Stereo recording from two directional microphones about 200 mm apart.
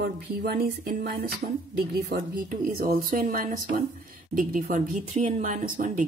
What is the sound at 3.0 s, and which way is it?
A woman's voice, 40° right (ahead or behind).